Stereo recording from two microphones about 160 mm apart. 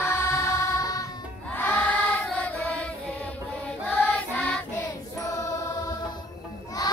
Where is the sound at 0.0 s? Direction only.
15° left (ahead or behind).